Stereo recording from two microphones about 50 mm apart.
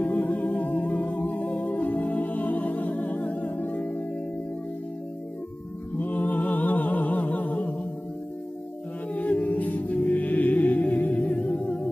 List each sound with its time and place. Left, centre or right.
0.0 s music: left
5.9 s music: left
9.1 s a capella: left
10.0 s music: left